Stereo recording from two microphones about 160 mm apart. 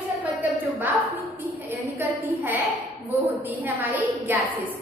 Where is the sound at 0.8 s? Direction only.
10° right (ahead or behind).